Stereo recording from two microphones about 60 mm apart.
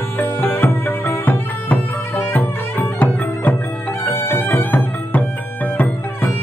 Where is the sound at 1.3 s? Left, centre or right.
Left.